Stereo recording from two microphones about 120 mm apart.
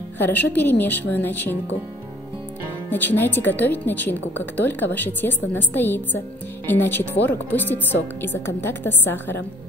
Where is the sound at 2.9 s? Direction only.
15° left (ahead or behind).